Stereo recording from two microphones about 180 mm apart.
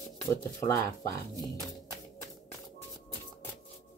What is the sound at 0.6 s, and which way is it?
Speech, 15° left (ahead or behind).